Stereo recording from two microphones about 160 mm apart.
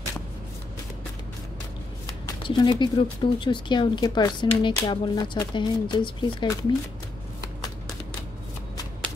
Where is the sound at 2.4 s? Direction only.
30° left (ahead or behind).